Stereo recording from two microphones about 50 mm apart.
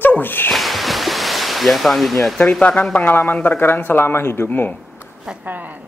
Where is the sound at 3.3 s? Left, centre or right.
Left.